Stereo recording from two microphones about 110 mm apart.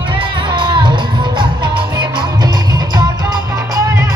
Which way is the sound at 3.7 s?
25° right (ahead or behind).